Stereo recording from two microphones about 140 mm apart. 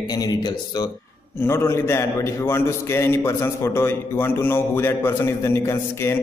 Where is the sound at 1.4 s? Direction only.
20° left (ahead or behind).